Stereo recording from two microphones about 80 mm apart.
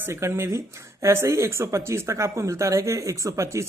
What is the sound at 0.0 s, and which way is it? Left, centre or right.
Speech, right.